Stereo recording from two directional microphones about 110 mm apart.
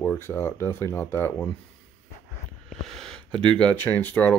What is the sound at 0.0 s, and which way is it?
Speech, 20° left (ahead or behind).